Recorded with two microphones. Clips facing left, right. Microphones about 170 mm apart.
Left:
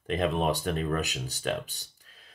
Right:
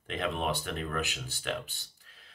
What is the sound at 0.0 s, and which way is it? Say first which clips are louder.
Speech: left 6 dB; 40° left (ahead or behind).